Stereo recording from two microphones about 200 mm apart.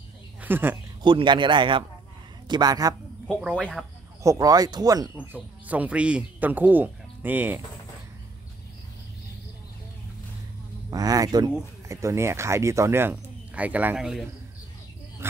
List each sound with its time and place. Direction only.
0.4 s speech: 10° right (ahead or behind)
1.0 s a man's voice: 25° right (ahead or behind)
3.3 s speech: centre (ahead or behind)
4.2 s speech: 15° right (ahead or behind)
5.1 s speech: 5° right (ahead or behind)
10.9 s a man's voice: 20° right (ahead or behind); by 14.2 s centre (ahead or behind)